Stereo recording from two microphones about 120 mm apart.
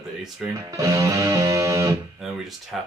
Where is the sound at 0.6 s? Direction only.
25° right (ahead or behind).